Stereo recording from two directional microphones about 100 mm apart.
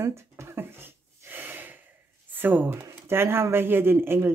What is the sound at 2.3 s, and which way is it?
Speech, 20° right (ahead or behind).